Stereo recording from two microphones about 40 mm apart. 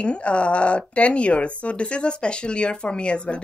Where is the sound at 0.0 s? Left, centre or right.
Left.